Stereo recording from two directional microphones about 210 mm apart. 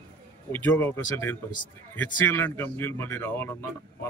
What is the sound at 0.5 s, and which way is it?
Speech, 10° left (ahead or behind).